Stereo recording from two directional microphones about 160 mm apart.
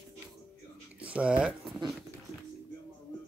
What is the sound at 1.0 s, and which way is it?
Speech, 10° right (ahead or behind).